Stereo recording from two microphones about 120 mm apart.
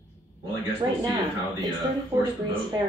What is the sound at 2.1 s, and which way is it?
Speech, 20° right (ahead or behind).